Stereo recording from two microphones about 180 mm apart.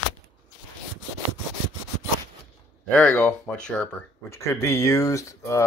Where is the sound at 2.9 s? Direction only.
5° left (ahead or behind).